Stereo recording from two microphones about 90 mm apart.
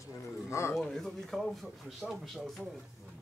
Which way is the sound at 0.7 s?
5° left (ahead or behind).